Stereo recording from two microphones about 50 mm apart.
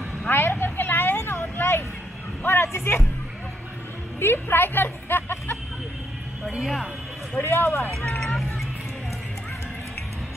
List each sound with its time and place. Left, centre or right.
0.3 s vehicle: left
1.3 s vehicle: left
2.4 s a sound: left
4.2 s a sound: left
6.6 s speech: centre
7.4 s speech: left
7.9 s speech: centre